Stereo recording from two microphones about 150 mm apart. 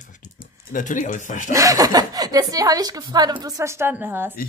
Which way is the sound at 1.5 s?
25° right (ahead or behind).